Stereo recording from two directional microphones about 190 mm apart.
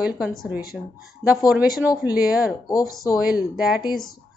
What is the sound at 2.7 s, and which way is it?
Speech, 20° left (ahead or behind).